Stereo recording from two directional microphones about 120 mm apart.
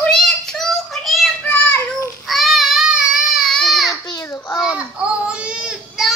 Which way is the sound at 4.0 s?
30° left (ahead or behind).